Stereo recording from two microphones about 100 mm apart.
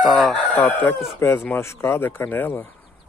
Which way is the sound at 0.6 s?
15° left (ahead or behind).